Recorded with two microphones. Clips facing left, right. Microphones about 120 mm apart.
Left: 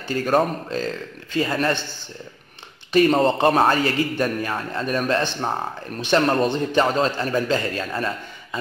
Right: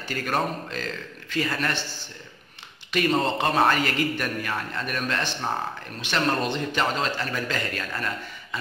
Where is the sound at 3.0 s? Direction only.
30° left (ahead or behind).